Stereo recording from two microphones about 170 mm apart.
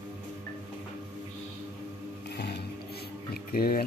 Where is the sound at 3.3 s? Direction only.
60° left (ahead or behind).